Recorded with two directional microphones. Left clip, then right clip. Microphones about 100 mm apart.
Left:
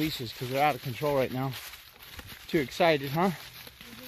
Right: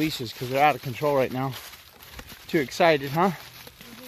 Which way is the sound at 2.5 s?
15° left (ahead or behind).